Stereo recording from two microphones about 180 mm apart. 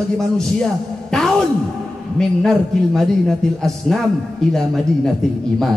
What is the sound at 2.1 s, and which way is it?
A man's voice, centre (ahead or behind).